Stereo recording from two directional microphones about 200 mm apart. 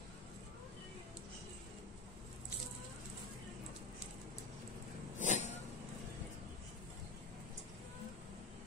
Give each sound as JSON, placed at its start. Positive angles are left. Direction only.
{"t": 5.2, "sound": "vehicle", "side_deg": 35}